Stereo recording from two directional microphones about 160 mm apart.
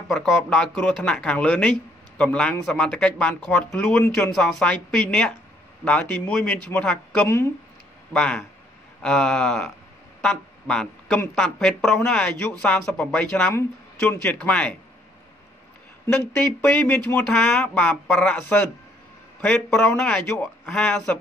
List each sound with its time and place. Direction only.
0.1 s speech: 5° left (ahead or behind)
7.2 s speech: 15° left (ahead or behind)
16.2 s speech: 10° left (ahead or behind)